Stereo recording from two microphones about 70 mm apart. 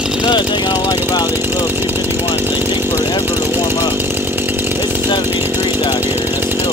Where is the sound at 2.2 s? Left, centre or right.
Left.